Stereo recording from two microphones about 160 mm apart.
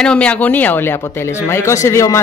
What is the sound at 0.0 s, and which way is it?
Speech, 5° left (ahead or behind).